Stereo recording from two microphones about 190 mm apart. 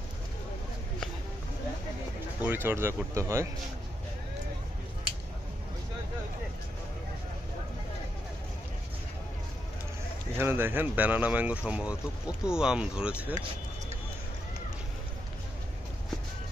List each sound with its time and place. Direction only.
2.4 s speech: 10° right (ahead or behind)
10.3 s speech: 10° right (ahead or behind)